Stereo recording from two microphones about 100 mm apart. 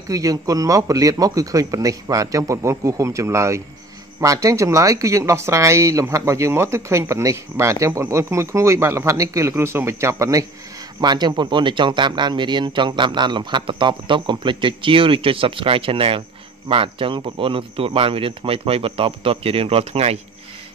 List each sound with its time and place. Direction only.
0.1 s speech: 35° right (ahead or behind)
11.0 s speech: 45° right (ahead or behind); by 20.2 s 85° right